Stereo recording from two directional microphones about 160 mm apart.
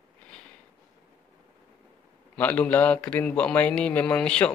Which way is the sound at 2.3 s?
10° left (ahead or behind).